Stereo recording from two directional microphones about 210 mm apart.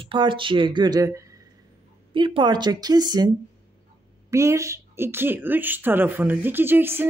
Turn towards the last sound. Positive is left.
turn(degrees=-10)  # may be behind; listen again after turning